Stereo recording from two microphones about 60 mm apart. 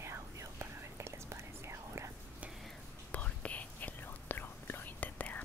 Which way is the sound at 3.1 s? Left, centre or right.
Left.